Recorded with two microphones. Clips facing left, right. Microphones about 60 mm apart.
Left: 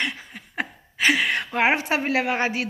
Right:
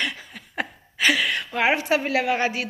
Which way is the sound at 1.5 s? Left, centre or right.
Left.